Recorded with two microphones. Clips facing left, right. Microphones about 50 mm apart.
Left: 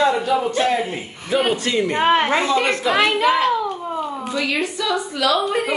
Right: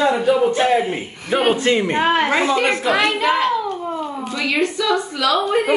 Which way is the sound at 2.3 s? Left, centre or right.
Right.